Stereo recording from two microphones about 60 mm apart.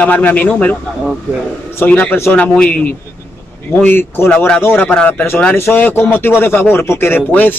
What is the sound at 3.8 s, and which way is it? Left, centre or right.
A man's voice, left.